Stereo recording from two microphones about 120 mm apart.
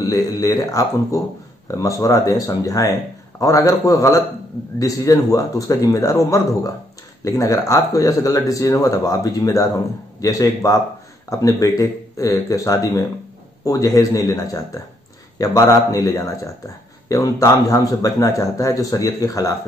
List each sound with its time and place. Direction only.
0.0 s a man's voice: 30° left (ahead or behind)